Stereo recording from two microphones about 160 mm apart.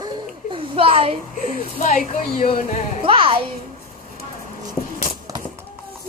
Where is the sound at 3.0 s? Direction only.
35° right (ahead or behind).